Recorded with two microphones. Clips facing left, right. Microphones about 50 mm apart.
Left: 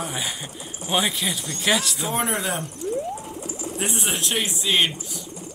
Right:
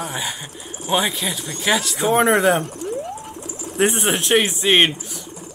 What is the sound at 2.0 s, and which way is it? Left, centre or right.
Speech, right.